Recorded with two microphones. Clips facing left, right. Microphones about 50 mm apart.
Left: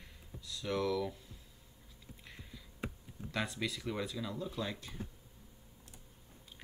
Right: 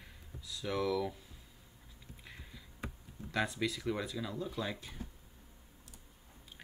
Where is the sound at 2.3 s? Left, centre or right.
Centre.